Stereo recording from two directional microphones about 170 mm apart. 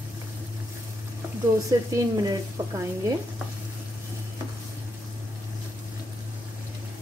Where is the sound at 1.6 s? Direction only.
20° right (ahead or behind).